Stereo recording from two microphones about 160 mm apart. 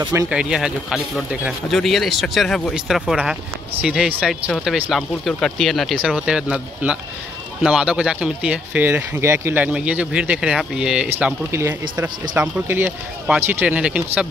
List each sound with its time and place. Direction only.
0.0 s speech: 20° right (ahead or behind)
0.3 s speech: 5° right (ahead or behind)